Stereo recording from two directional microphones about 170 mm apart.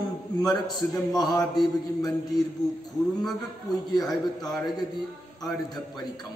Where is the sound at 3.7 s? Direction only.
25° left (ahead or behind).